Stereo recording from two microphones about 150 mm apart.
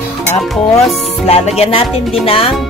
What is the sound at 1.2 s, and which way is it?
Speech, 45° left (ahead or behind).